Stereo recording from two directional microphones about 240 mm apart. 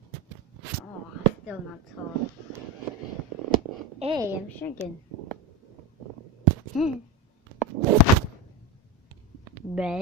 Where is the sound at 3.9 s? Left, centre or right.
Right.